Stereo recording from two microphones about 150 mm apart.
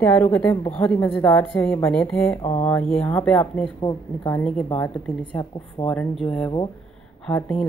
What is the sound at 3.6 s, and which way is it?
Speech, 30° left (ahead or behind).